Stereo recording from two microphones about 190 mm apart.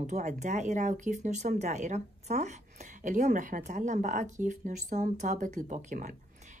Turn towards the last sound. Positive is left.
turn(degrees=-40)  # may be behind; listen again after turning